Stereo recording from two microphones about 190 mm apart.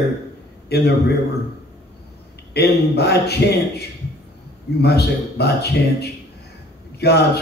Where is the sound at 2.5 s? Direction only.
60° left (ahead or behind).